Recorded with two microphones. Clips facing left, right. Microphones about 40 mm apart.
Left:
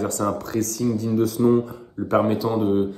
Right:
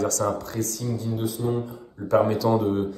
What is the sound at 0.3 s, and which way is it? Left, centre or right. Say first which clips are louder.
Speech: left 3 dB; left.